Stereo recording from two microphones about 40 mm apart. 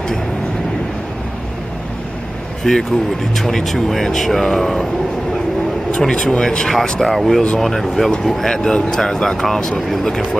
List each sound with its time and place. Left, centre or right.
2.6 s speech: centre
5.9 s speech: centre
7.0 s speech: centre
8.5 s speech: centre